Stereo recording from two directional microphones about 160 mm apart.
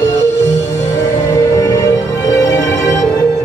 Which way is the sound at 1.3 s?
20° left (ahead or behind).